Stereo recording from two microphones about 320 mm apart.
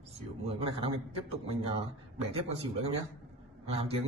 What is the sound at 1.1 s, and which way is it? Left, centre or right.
Speech, centre.